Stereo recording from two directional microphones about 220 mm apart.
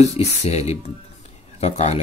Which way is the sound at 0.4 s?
30° left (ahead or behind).